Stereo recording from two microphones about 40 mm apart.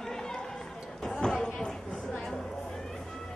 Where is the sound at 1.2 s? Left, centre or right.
Centre.